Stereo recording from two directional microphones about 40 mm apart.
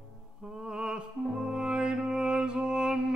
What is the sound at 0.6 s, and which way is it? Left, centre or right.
Music, centre.